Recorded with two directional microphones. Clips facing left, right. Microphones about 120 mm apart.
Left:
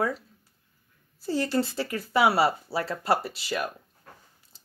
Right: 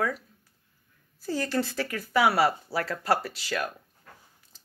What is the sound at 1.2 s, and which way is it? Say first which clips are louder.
Speech: left 2 dB; 25° left (ahead or behind).